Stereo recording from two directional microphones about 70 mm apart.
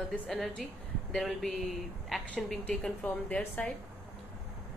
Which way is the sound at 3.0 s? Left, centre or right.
Left.